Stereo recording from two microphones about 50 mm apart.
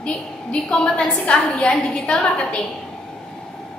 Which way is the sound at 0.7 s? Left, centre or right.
Left.